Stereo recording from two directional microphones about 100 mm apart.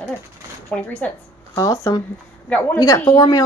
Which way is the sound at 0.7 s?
15° left (ahead or behind).